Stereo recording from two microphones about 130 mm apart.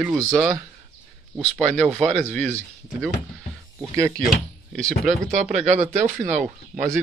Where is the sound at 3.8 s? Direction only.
20° right (ahead or behind).